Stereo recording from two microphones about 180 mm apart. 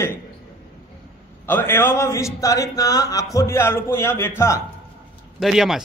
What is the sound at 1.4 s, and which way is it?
A man's voice, 10° left (ahead or behind).